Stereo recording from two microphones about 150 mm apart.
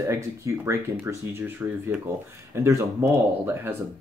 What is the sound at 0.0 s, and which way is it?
Speech, 20° right (ahead or behind).